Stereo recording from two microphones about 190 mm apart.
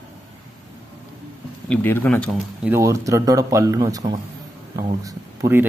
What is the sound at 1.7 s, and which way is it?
Speech, 10° left (ahead or behind).